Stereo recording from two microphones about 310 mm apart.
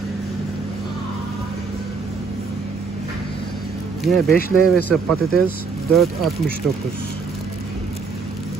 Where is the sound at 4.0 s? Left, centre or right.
Centre.